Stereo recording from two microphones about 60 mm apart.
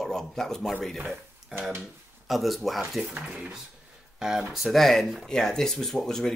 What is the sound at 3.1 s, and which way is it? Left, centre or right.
Speech, right.